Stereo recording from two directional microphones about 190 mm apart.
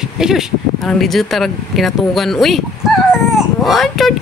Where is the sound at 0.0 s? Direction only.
5° right (ahead or behind).